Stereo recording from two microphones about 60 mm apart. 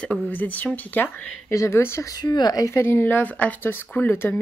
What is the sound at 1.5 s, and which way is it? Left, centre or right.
Speech, left.